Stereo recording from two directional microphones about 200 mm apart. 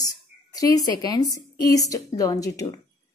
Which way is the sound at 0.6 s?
20° left (ahead or behind).